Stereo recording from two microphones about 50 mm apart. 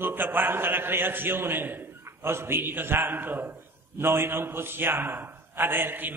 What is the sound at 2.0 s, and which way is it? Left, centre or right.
A man's voice, right.